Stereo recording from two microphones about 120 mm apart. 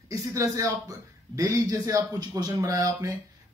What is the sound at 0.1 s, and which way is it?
A man's voice, 25° right (ahead or behind).